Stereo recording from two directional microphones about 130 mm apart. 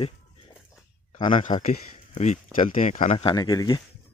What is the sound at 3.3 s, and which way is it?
Speech, 30° left (ahead or behind).